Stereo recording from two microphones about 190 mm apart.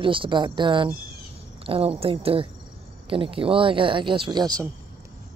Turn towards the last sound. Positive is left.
turn(degrees=-20)  # may be behind; listen again after turning